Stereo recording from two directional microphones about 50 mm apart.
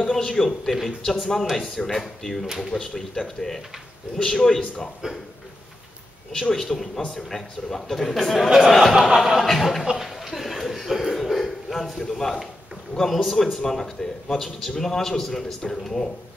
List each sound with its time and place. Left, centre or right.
0.0 s a man's voice: centre
2.4 s speech: centre
2.7 s a man's voice: centre
6.4 s a man's voice: centre
9.8 s a sound: centre
12.9 s a man's voice: centre